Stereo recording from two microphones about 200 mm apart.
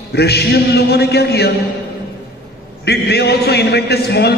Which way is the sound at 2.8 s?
55° left (ahead or behind).